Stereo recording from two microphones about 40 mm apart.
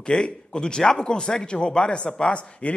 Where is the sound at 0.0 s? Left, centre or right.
Left.